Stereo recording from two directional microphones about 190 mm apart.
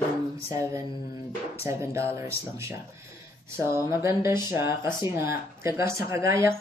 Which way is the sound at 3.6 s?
15° right (ahead or behind).